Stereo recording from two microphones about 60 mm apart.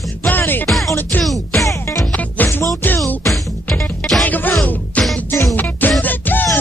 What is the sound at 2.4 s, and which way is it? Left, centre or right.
Music, left.